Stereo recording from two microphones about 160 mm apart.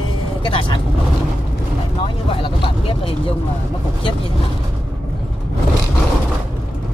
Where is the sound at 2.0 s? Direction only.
35° left (ahead or behind).